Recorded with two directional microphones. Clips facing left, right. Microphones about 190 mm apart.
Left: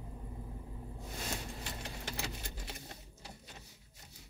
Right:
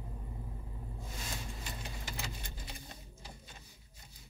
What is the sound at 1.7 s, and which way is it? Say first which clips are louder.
Keys jangling: left 1 dB; 70° left (ahead or behind).